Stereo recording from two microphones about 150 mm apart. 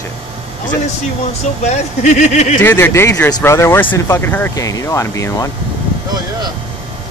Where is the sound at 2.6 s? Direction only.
15° left (ahead or behind).